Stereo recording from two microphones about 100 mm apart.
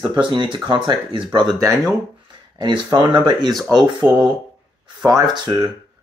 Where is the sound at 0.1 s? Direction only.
55° right (ahead or behind).